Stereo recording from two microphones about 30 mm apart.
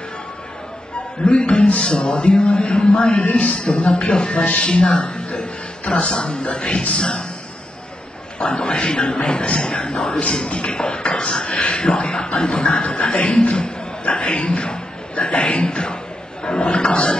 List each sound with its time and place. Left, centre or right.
1.2 s a man's voice: left
8.4 s a man's voice: left